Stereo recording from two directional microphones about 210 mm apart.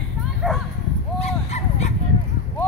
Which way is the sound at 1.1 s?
30° left (ahead or behind).